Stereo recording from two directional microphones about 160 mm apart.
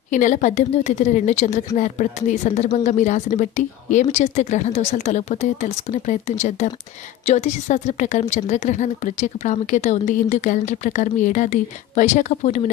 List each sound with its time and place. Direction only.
0.1 s a woman's voice: 50° left (ahead or behind)